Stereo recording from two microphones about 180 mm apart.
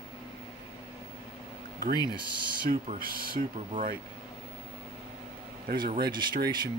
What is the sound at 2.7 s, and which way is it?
Speech, 55° right (ahead or behind).